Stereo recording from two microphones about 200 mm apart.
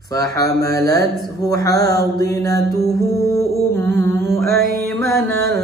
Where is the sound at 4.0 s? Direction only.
15° left (ahead or behind).